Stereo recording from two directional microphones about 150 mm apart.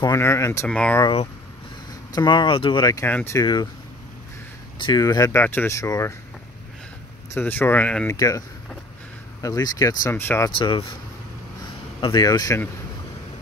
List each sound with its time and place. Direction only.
0.0 s speech: 20° left (ahead or behind)
0.7 s speech: 5° left (ahead or behind)
2.1 s speech: 30° left (ahead or behind)
3.1 s speech: 10° left (ahead or behind)
3.3 s speech: 30° left (ahead or behind)
4.7 s speech: 30° left (ahead or behind)
7.3 s speech: 15° left (ahead or behind)
8.1 s speech: 20° left (ahead or behind)
10.6 s speech: 35° left (ahead or behind)
12.1 s speech: 25° left (ahead or behind)